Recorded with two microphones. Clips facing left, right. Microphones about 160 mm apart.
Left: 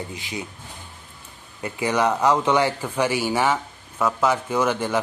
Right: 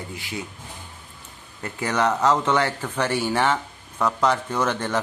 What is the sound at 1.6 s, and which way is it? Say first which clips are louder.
A man's voice: left 2 dB; 15° left (ahead or behind).